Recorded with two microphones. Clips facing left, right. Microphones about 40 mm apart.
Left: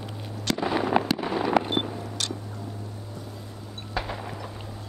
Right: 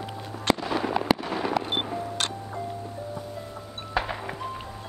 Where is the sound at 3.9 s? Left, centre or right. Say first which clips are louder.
Right 3 dB; centre.